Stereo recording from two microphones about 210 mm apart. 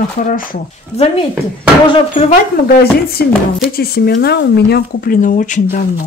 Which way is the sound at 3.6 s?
45° left (ahead or behind).